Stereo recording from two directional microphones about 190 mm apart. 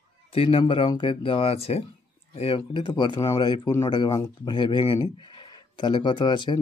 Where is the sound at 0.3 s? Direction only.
30° left (ahead or behind).